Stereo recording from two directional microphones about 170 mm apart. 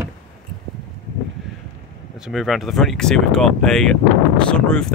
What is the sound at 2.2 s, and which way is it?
Speech, centre (ahead or behind).